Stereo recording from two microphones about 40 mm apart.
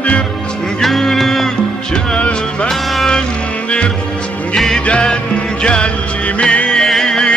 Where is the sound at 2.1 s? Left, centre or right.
Left.